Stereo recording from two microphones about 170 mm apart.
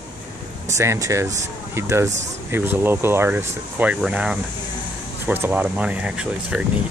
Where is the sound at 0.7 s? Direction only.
15° right (ahead or behind).